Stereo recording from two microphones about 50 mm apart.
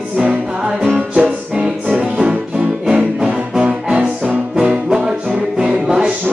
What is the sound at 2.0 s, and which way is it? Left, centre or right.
Music, right.